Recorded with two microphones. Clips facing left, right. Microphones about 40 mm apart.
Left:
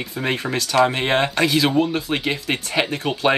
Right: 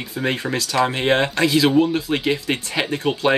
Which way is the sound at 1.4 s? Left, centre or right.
Left.